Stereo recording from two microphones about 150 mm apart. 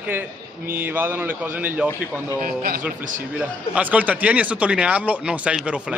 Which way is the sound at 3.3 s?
10° right (ahead or behind).